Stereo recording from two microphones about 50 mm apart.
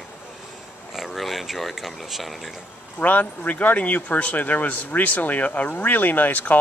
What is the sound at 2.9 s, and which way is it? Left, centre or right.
Speech, left.